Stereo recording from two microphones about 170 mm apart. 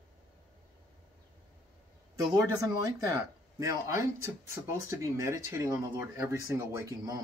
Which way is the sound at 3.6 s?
15° right (ahead or behind).